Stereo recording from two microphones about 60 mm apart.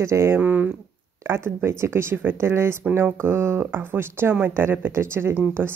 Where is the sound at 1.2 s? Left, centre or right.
Right.